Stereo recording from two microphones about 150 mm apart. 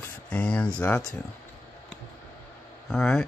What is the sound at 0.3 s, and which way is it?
Speech, 10° left (ahead or behind).